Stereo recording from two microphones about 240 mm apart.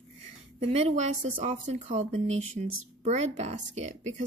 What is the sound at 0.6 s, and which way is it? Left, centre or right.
Speech, right.